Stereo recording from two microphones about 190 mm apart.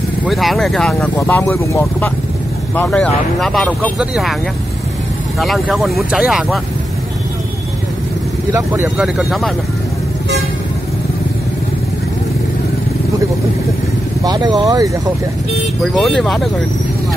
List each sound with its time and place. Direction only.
0.3 s speech: centre (ahead or behind)
1.1 s speech: 15° left (ahead or behind)
5.4 s speech: centre (ahead or behind)
8.5 s speech: 15° right (ahead or behind)
8.9 s speech: centre (ahead or behind)
14.2 s speech: 20° right (ahead or behind)
15.8 s speech: centre (ahead or behind)